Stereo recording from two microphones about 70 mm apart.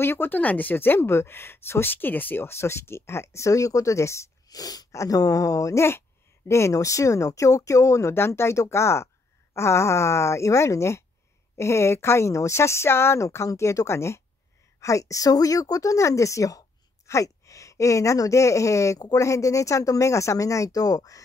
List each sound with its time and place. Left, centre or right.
0.0 s speech: left
4.5 s speech: left
5.9 s speech: left
14.8 s speech: left